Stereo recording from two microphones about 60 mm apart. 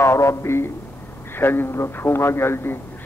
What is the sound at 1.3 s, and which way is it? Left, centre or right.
A man's voice, left.